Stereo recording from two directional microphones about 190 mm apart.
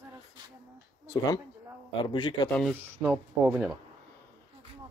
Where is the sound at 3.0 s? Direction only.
10° right (ahead or behind).